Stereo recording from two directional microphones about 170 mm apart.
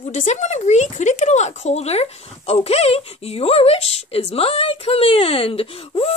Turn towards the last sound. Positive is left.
turn(degrees=35)  # may be behind; listen again after turning